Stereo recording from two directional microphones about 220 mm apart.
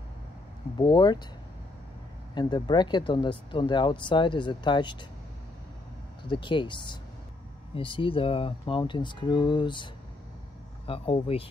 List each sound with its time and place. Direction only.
0.7 s speech: 20° left (ahead or behind)
2.3 s speech: 20° left (ahead or behind)
6.2 s speech: 20° left (ahead or behind)
10.9 s speech: 25° left (ahead or behind)